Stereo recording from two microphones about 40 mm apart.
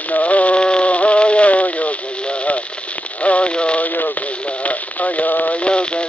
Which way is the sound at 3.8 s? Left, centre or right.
Left.